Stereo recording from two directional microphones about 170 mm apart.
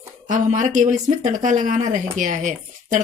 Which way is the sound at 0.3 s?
45° right (ahead or behind).